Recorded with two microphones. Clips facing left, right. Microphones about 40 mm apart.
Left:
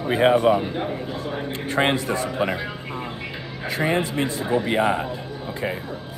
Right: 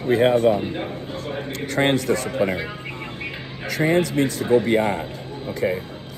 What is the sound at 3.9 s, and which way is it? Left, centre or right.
Speech, left.